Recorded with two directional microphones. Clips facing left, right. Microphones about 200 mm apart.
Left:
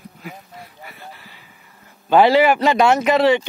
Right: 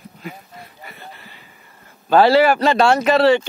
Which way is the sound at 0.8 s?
5° left (ahead or behind).